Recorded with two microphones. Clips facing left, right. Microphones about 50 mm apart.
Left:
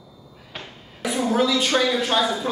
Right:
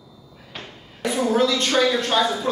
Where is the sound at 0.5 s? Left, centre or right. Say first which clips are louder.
Even; centre.